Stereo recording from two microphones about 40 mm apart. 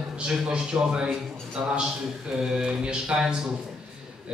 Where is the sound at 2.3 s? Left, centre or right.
Centre.